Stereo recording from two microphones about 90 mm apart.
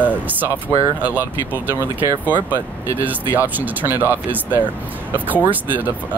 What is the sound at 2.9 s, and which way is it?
Speech, 20° right (ahead or behind).